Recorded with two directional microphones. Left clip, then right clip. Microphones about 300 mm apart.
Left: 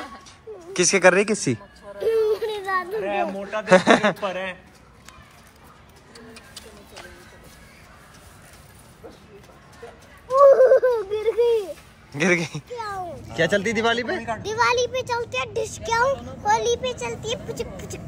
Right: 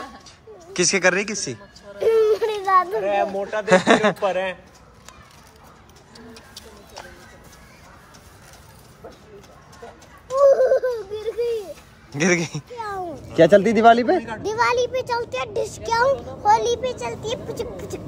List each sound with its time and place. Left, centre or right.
0.7 s speech: centre
2.0 s a sound: centre
3.1 s speech: right
3.6 s speech: centre
4.3 s speech: right
10.3 s a sound: left
12.1 s a child's voice: centre
13.4 s a child's voice: right